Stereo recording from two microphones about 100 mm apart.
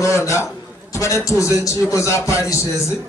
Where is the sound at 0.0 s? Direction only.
30° left (ahead or behind).